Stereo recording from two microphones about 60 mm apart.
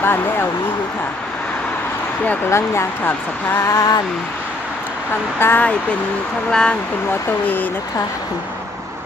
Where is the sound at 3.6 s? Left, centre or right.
Left.